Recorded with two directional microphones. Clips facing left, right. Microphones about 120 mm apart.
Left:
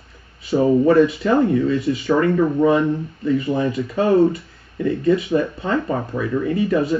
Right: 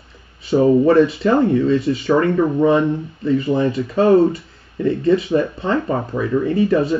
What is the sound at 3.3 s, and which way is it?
Speech, 30° right (ahead or behind).